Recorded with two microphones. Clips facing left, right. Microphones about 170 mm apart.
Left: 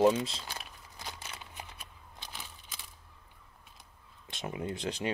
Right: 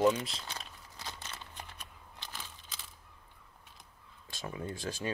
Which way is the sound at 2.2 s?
10° left (ahead or behind).